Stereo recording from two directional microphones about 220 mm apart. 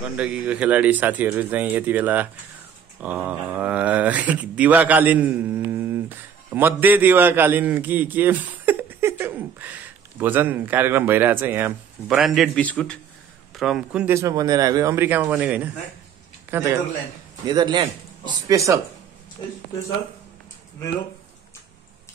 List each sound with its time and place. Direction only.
0.0 s a man's voice: 5° right (ahead or behind)